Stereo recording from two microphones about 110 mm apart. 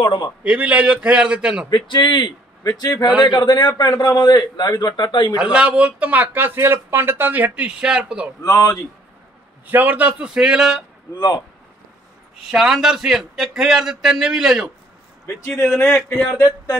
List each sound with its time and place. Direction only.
0.0 s a man's voice: 45° left (ahead or behind)
0.4 s speech: 15° right (ahead or behind)
1.7 s a man's voice: 45° left (ahead or behind)
5.4 s speech: 10° right (ahead or behind)
8.4 s a man's voice: 30° left (ahead or behind)
9.7 s speech: 15° right (ahead or behind)
11.1 s a man's voice: 35° left (ahead or behind)
12.4 s a man's voice: 5° right (ahead or behind)
15.2 s a man's voice: 20° left (ahead or behind)